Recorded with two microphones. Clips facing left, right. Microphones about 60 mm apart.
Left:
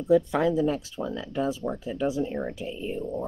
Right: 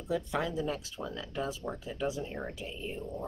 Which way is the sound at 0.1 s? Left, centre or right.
Left.